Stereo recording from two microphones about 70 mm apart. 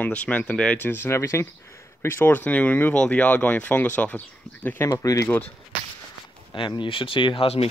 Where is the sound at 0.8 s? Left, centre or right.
Left.